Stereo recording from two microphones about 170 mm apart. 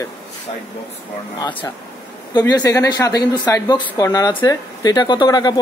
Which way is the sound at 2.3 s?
20° left (ahead or behind).